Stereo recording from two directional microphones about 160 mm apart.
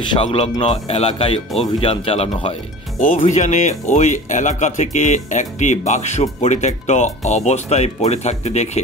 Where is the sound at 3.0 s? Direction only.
55° left (ahead or behind).